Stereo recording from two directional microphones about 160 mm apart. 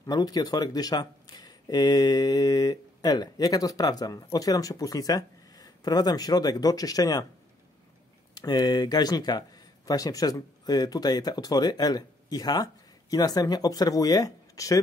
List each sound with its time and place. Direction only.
0.0 s speech: 25° left (ahead or behind)
8.4 s speech: 25° left (ahead or behind)